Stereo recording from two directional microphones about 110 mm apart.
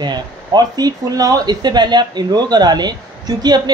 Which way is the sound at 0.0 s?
40° right (ahead or behind).